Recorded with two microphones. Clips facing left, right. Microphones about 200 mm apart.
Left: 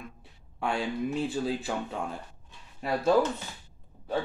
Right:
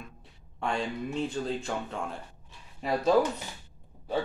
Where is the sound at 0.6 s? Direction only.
5° left (ahead or behind).